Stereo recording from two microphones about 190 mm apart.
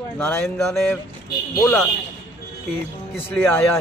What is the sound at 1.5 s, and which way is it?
Speech, 15° left (ahead or behind).